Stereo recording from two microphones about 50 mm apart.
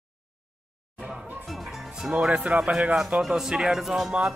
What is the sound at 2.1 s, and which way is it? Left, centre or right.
Speech, right.